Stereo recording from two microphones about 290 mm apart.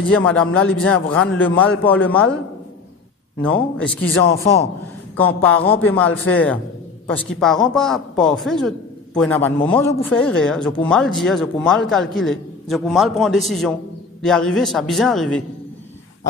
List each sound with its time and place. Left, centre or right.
0.1 s speech: centre
3.4 s speech: centre
4.1 s a man's voice: left
5.1 s speech: centre